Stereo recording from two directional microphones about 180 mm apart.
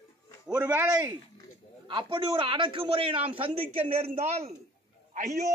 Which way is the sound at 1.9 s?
25° right (ahead or behind).